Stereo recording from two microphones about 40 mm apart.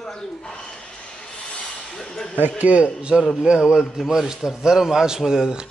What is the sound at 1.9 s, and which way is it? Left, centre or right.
Speech, centre.